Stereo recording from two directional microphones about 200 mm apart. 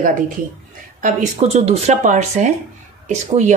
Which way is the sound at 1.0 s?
35° right (ahead or behind).